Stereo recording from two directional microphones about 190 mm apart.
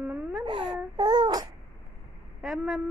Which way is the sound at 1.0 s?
20° right (ahead or behind).